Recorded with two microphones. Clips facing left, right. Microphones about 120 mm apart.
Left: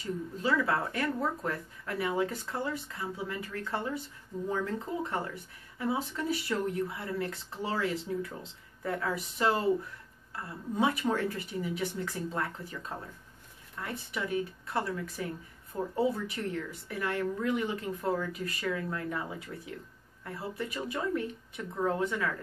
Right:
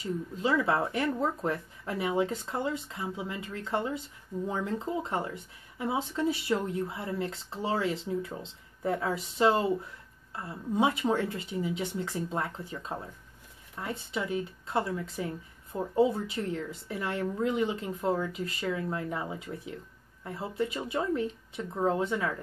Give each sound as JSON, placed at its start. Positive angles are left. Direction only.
{"t": 0.4, "sound": "speech", "side_deg": -20}